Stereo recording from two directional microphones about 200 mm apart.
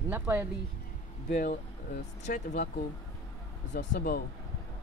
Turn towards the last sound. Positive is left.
turn(degrees=45)  # may be behind; listen again after turning